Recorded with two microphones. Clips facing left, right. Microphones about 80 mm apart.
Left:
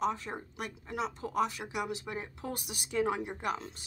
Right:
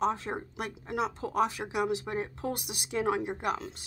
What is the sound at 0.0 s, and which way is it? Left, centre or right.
Speech, right.